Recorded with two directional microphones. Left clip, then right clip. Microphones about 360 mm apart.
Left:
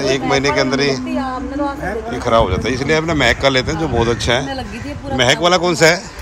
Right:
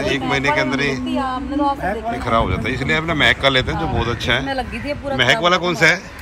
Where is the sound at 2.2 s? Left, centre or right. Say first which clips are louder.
Left 7 dB; centre.